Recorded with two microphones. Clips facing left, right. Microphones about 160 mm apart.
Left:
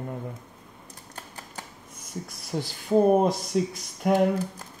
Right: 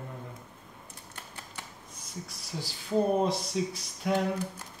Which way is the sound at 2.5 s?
55° left (ahead or behind).